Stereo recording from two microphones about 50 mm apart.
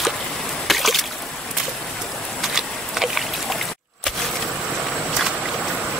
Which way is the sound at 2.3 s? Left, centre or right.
Centre.